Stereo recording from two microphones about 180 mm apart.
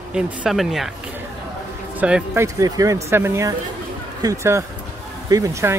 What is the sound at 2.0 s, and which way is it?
Speech, 10° right (ahead or behind).